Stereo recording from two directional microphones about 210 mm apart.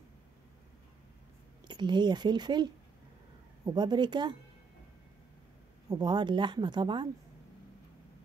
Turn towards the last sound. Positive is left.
turn(degrees=-20)  # may be behind; listen again after turning